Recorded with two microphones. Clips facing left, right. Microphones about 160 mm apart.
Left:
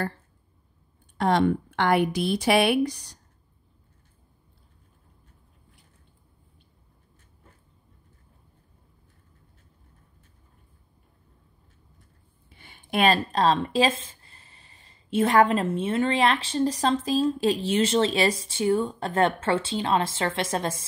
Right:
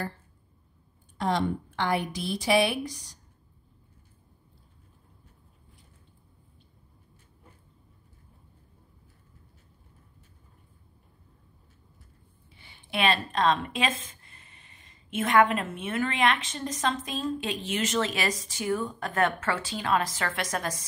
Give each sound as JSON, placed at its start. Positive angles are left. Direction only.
{"t": 1.1, "sound": "a woman's voice", "side_deg": 65}
{"t": 12.5, "sound": "speech", "side_deg": 50}